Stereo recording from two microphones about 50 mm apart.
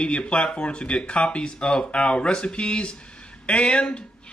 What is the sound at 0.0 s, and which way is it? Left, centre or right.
A man's voice, left.